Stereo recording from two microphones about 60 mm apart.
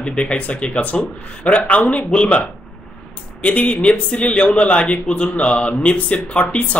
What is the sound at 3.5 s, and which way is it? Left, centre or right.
A man's voice, left.